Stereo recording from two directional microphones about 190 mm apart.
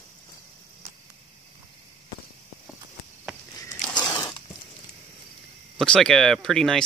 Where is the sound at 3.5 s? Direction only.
15° left (ahead or behind).